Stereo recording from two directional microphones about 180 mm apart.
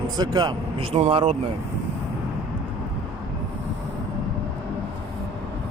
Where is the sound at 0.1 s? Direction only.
25° right (ahead or behind).